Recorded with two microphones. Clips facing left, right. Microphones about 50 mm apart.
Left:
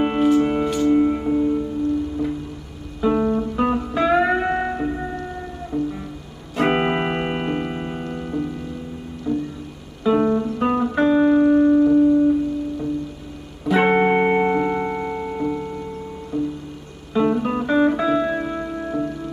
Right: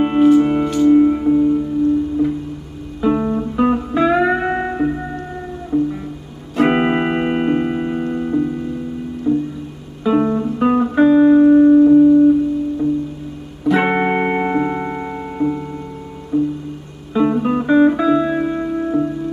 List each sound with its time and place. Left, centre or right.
0.0 s music: centre
3.0 s music: centre
6.5 s music: centre
8.0 s music: centre
10.3 s music: right
10.6 s music: centre
11.6 s music: centre
13.7 s music: centre